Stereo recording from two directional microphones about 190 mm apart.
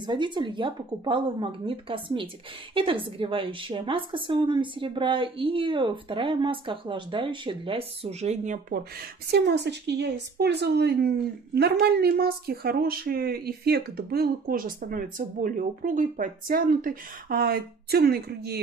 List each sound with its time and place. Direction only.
0.0 s a woman's voice: 25° right (ahead or behind); by 8.8 s 45° right (ahead or behind)
9.3 s a woman's voice: 60° right (ahead or behind)